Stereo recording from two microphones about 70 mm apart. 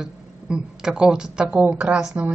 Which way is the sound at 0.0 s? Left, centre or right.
Centre.